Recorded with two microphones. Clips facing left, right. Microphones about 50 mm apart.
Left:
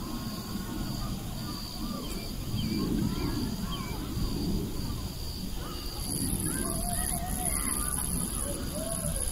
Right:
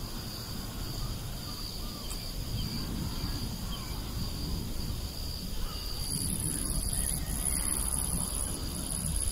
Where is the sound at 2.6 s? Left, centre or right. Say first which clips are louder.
Left 9 dB; left.